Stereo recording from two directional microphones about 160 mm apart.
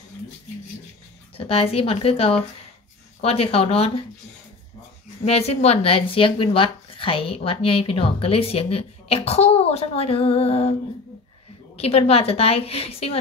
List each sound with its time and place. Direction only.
1.3 s speech: 35° left (ahead or behind)
5.2 s speech: 40° left (ahead or behind)
11.7 s speech: 40° left (ahead or behind)